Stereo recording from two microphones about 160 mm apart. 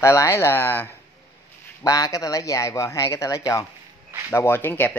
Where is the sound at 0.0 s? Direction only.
15° left (ahead or behind).